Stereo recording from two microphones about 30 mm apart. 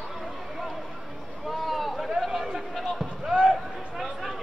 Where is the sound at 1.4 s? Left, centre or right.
Centre.